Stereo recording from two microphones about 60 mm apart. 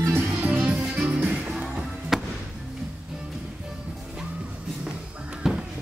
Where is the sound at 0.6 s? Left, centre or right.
Right.